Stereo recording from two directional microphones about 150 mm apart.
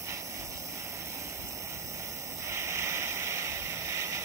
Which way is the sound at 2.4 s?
20° right (ahead or behind).